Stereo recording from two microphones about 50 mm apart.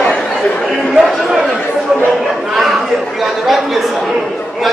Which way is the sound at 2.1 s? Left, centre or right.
Centre.